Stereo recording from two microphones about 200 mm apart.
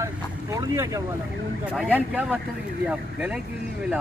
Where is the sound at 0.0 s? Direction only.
15° right (ahead or behind).